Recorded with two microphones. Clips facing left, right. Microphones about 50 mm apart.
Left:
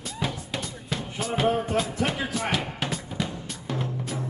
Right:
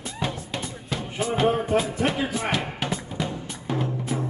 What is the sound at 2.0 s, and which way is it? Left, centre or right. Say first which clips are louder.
Music: right 3 dB; centre.